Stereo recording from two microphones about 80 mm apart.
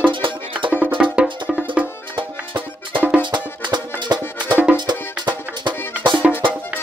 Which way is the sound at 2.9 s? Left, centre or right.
Centre.